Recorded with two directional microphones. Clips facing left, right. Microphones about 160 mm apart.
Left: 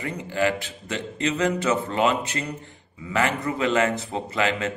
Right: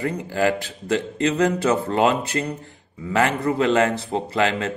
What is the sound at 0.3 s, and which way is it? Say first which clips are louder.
A man's voice: right 1 dB; 40° right (ahead or behind).